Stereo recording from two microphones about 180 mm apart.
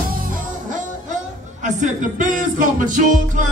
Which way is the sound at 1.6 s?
45° right (ahead or behind).